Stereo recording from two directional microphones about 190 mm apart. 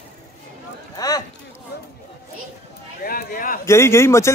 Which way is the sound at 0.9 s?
20° left (ahead or behind).